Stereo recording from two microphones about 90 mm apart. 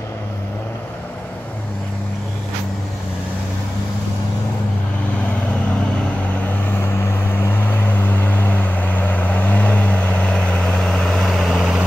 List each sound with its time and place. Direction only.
7.2 s vehicle: 25° left (ahead or behind); by 11.8 s 5° right (ahead or behind)